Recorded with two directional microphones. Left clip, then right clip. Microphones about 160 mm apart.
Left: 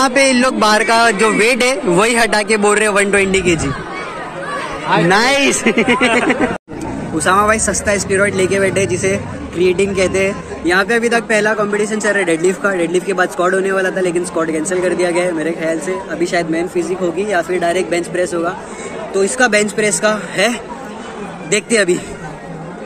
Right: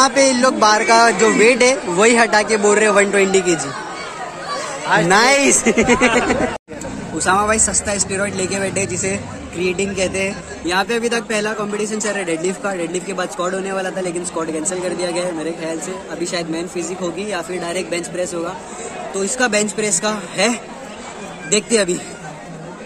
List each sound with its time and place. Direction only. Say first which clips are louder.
0.0 s a man's voice: left 1 dB; 15° left (ahead or behind)
5.1 s a woman's voice: right 1 dB; centre (ahead or behind)
7.2 s a woman's voice: left 3 dB; 5° right (ahead or behind)